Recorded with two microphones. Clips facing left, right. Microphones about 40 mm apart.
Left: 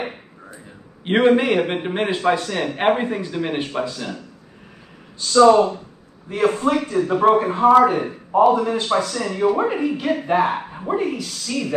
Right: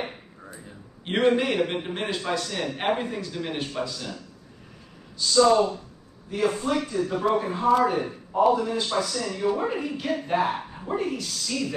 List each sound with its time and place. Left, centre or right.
1.3 s a man's voice: left
5.3 s a man's voice: left
9.8 s a man's voice: centre